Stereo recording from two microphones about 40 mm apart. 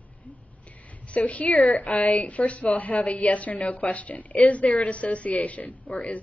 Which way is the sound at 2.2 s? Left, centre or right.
Left.